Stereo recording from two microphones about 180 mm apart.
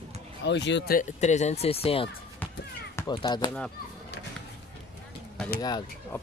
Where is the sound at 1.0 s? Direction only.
40° left (ahead or behind).